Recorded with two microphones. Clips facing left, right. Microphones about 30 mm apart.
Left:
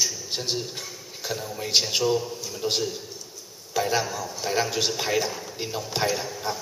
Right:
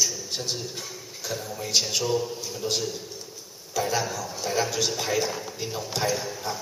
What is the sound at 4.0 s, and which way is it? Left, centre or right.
Speech, centre.